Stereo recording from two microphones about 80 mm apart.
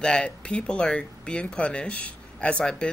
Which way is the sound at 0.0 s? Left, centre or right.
Centre.